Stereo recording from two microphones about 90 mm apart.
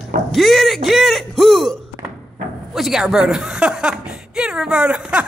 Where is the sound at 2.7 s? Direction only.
5° right (ahead or behind).